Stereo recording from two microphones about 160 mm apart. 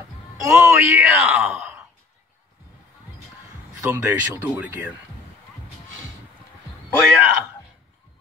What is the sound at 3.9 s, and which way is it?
Speech, 15° right (ahead or behind).